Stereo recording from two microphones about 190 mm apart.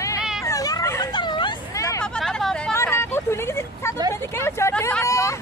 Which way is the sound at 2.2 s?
Centre (ahead or behind).